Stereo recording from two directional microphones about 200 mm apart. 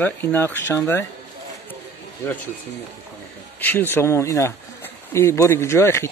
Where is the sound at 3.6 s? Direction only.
10° left (ahead or behind).